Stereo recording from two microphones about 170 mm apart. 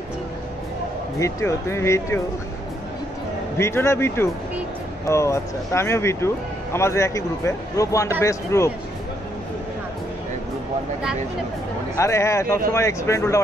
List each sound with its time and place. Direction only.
1.2 s speech: 15° left (ahead or behind)
3.5 s speech: 15° left (ahead or behind)
12.0 s speech: 15° left (ahead or behind)